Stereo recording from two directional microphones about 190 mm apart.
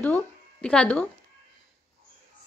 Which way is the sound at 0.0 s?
10° left (ahead or behind).